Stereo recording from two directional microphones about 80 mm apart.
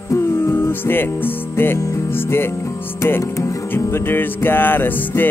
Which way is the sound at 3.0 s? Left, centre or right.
Left.